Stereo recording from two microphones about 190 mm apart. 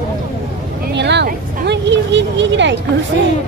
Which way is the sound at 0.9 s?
65° right (ahead or behind).